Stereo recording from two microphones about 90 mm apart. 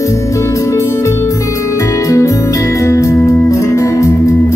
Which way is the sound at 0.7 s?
35° left (ahead or behind).